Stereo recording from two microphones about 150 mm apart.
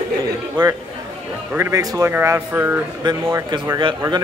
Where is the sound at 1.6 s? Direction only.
20° right (ahead or behind).